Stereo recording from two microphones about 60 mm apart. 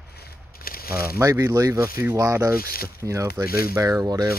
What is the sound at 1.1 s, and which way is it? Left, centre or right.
Speech, right.